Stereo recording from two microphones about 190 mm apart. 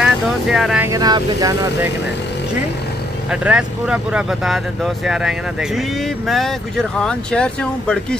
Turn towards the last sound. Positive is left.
turn(degrees=5)  # may be behind; listen again after turning